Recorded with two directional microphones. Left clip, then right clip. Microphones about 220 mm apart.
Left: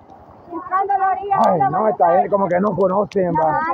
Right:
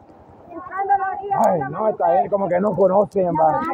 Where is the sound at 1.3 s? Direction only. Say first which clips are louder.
Left 1 dB; 50° left (ahead or behind).